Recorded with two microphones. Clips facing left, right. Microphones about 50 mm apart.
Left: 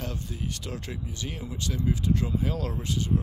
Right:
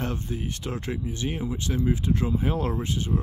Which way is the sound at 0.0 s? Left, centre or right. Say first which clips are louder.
Right 5 dB; right.